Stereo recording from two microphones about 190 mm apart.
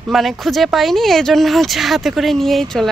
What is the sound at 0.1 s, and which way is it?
Speech, centre (ahead or behind).